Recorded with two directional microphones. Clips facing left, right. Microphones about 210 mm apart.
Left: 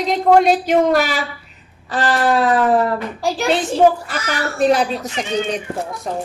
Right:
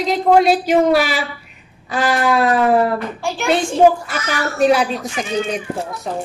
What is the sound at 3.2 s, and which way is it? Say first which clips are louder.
Speech: left 3 dB; 35° left (ahead or behind).